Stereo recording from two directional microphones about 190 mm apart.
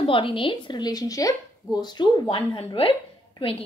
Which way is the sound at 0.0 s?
25° left (ahead or behind).